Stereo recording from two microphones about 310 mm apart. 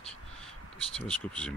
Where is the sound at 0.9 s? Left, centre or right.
Centre.